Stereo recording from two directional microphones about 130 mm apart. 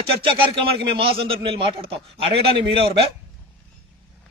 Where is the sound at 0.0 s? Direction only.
45° right (ahead or behind).